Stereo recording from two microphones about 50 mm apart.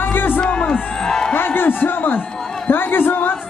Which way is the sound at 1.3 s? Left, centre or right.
Left.